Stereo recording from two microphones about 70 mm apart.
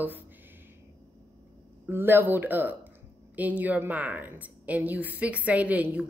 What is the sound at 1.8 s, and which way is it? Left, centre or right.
A woman's voice, right.